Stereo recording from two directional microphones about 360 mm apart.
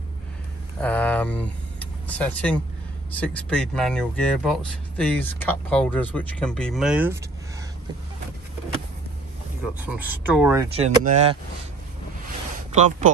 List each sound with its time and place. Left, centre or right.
0.7 s speech: centre
9.8 s speech: centre
12.7 s speech: centre